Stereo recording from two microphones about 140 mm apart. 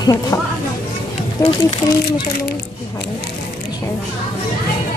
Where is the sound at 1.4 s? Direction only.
20° left (ahead or behind).